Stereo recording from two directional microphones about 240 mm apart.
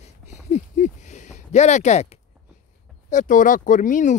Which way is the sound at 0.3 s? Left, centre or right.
Left.